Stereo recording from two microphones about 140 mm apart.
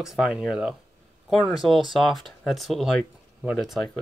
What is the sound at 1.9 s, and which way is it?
Speech, centre (ahead or behind).